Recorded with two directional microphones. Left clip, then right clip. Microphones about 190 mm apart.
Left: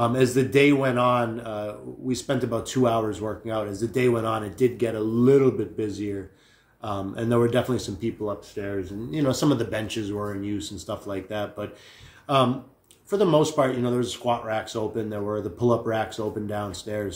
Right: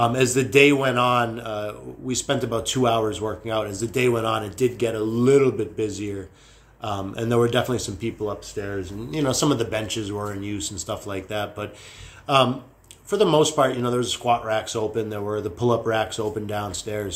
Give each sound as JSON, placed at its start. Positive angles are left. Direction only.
{"t": 0.0, "sound": "speech", "side_deg": 15}
{"t": 13.1, "sound": "speech", "side_deg": 15}